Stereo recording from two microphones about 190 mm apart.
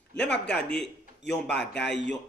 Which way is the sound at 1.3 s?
60° left (ahead or behind).